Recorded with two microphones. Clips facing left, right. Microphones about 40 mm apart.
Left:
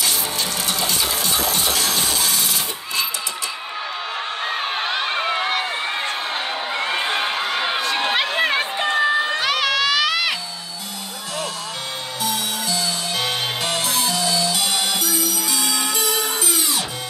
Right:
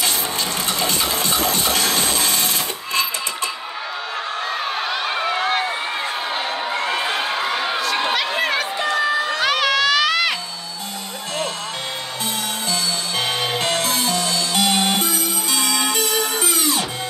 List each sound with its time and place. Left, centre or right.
0.7 s a sound: right
4.5 s crowd: left
5.3 s run: centre
6.7 s a sound: centre
7.6 s crowd: centre
8.0 s a sound: left
8.4 s crowd: left
9.4 s music: centre
12.2 s music: right